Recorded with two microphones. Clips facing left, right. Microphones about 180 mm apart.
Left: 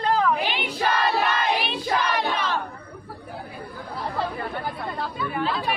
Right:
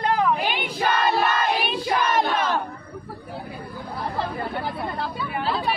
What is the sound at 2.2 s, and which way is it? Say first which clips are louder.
Battle cry: right 4 dB; 45° right (ahead or behind).